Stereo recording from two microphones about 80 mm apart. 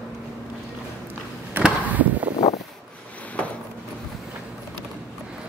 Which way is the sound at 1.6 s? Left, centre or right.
Centre.